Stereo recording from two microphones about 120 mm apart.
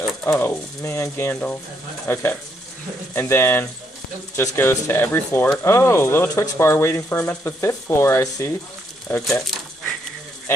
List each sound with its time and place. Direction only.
0.0 s speech: 20° left (ahead or behind)